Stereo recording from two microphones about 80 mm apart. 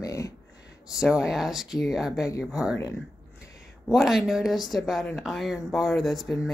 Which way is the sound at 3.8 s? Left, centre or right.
Centre.